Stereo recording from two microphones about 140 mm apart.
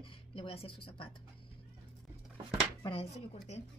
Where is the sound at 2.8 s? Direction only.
45° left (ahead or behind).